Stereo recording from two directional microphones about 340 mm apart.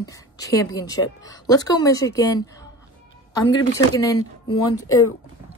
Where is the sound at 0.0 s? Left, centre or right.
Centre.